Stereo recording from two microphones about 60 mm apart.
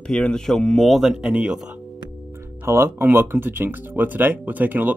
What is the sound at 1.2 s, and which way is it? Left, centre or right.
Speech, centre.